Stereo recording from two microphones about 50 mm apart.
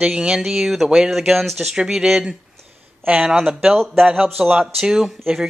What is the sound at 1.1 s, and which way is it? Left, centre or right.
Speech, centre.